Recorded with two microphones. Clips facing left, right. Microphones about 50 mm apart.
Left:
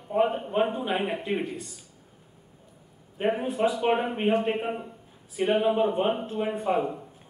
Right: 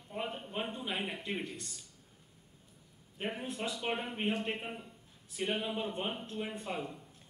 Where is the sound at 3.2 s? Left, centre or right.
Left.